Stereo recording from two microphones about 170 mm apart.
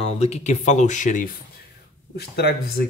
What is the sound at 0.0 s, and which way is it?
Speech, 40° left (ahead or behind).